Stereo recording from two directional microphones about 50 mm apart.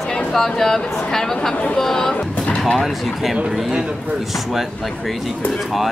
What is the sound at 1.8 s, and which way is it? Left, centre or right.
Speech, centre.